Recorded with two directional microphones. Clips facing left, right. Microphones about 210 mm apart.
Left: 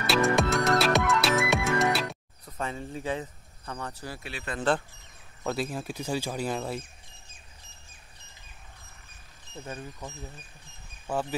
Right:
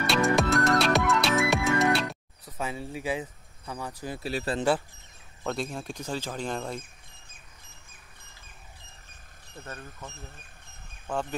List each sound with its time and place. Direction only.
0.0 s music: centre (ahead or behind); by 4.2 s 15° right (ahead or behind)
4.2 s speech: 40° right (ahead or behind)
5.4 s speech: 5° left (ahead or behind)
9.6 s speech: 10° left (ahead or behind)